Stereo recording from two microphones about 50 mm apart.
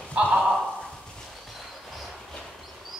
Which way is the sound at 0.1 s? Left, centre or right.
Right.